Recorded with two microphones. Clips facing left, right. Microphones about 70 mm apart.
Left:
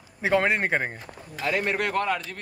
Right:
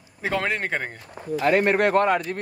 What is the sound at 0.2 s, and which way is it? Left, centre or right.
Speech, left.